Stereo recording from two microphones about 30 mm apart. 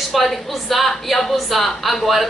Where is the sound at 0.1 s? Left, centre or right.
Centre.